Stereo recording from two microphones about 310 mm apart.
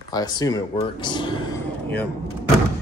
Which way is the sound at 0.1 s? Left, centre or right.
Centre.